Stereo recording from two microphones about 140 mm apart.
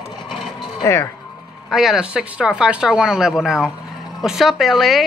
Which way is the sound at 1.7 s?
5° right (ahead or behind).